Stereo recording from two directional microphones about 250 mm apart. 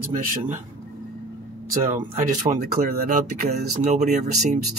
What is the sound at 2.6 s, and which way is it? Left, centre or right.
Speech, right.